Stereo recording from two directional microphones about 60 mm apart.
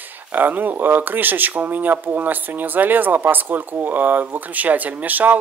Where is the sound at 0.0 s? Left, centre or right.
Right.